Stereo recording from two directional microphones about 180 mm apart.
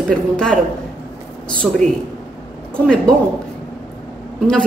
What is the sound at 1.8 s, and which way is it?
Speech, 45° right (ahead or behind).